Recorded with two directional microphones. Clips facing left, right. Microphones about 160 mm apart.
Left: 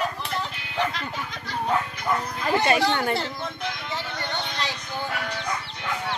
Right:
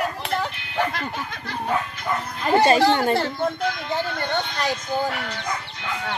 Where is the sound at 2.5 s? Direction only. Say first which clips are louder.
Right 5 dB; 30° right (ahead or behind).